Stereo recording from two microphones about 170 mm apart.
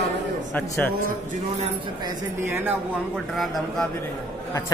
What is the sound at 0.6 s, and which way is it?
Speech, 10° left (ahead or behind).